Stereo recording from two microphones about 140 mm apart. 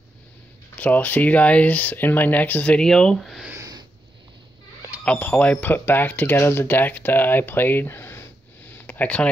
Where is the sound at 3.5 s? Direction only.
25° right (ahead or behind).